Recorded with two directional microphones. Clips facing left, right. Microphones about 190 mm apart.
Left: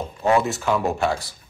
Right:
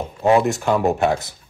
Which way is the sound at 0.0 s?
15° right (ahead or behind).